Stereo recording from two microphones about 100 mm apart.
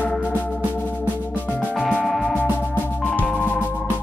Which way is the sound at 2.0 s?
Centre (ahead or behind).